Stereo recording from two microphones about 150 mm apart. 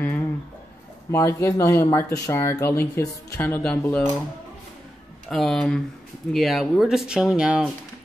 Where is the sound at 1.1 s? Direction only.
20° left (ahead or behind).